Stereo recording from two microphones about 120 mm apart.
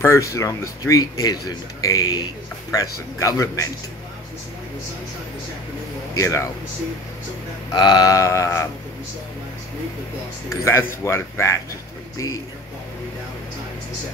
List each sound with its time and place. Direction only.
0.0 s speech: 25° left (ahead or behind)
6.1 s speech: 25° left (ahead or behind)
7.7 s speech: 35° left (ahead or behind)
10.5 s speech: 20° left (ahead or behind)